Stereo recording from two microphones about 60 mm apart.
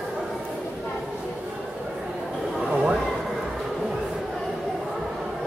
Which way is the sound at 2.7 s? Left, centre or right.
Centre.